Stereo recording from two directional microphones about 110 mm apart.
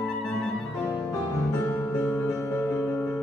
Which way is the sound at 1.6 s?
20° left (ahead or behind).